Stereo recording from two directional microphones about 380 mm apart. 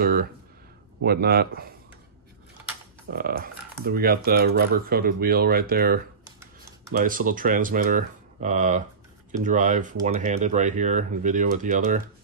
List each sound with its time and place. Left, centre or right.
0.0 s speech: right
3.1 s speech: right